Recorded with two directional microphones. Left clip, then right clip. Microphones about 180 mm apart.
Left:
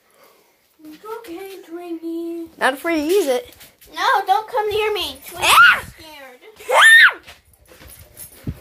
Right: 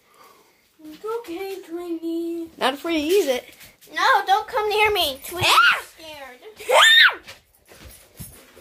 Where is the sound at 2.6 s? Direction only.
10° left (ahead or behind).